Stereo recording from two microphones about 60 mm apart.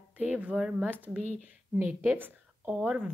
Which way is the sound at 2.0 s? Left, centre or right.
Right.